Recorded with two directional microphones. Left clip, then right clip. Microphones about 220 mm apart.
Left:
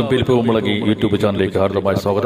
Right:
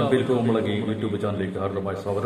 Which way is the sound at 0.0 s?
40° left (ahead or behind).